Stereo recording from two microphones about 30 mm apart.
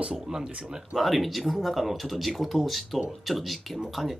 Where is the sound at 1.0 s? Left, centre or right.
Centre.